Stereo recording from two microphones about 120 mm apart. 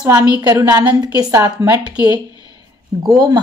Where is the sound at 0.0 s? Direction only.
30° right (ahead or behind).